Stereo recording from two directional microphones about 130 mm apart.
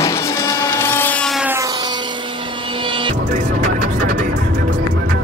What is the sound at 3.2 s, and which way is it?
Music, 80° right.